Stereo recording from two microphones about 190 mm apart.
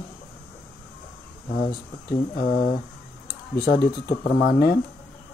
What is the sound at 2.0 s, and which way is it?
Speech, 45° left (ahead or behind).